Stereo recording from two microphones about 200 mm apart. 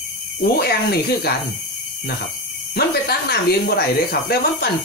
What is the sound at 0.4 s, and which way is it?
Speech, 50° left (ahead or behind).